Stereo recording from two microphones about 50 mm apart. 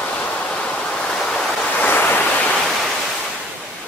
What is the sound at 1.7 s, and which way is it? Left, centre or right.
Waves, left.